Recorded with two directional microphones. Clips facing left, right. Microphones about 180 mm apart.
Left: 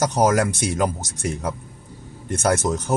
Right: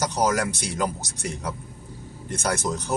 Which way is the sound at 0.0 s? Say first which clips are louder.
Left 5 dB; 50° left (ahead or behind).